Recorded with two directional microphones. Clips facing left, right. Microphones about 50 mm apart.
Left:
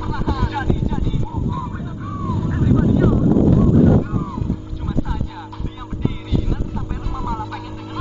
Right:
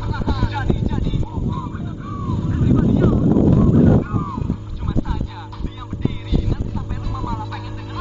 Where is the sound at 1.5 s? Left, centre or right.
Centre.